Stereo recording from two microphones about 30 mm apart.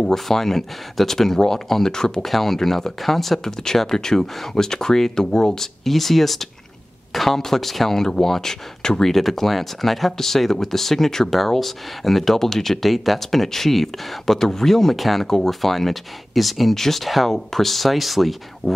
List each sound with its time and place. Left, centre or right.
0.1 s speech: centre
2.2 s speech: centre
3.4 s speech: centre
12.8 s speech: centre
15.0 s speech: centre
15.2 s speech: centre